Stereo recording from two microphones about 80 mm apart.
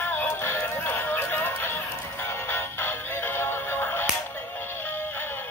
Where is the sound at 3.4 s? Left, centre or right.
Left.